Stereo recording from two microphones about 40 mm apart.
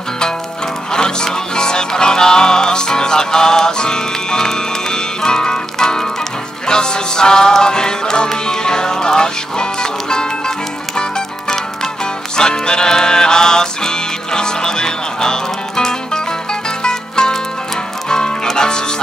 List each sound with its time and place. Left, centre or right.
0.9 s music: centre